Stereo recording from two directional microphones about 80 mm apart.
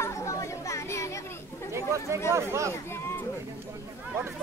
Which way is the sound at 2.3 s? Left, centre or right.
Right.